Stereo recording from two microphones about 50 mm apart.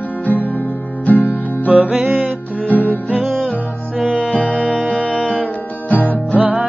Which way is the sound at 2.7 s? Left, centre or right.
Left.